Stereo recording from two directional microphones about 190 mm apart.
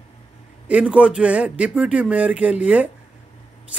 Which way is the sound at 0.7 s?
5° right (ahead or behind).